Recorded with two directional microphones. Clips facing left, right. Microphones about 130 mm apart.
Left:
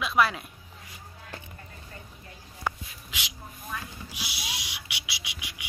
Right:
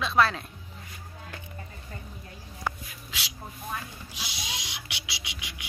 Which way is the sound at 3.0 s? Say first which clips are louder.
Even; 15° left (ahead or behind).